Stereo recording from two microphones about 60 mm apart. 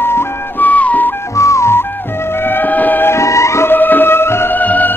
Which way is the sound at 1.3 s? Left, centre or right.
Left.